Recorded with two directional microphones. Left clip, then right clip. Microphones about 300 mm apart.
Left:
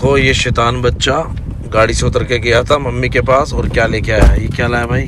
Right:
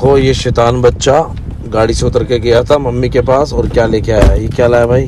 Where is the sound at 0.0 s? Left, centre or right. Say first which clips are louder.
Right 2 dB; centre.